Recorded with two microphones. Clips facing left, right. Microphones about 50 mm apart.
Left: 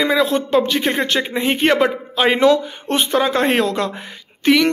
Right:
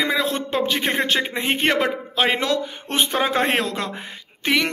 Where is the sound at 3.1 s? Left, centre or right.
Centre.